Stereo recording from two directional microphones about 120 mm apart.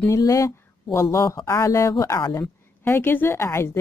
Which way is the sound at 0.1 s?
25° left (ahead or behind).